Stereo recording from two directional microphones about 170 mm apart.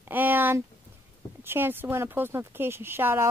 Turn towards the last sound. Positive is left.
turn(degrees=-15)  # may be behind; listen again after turning